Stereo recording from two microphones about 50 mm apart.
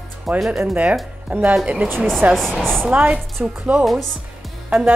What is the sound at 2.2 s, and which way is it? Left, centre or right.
A woman's voice, right.